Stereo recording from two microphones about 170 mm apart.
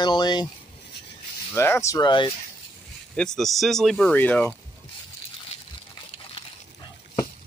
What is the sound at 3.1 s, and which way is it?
Speech, 5° left (ahead or behind).